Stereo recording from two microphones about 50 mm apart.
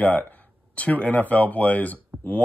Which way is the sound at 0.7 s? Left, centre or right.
Left.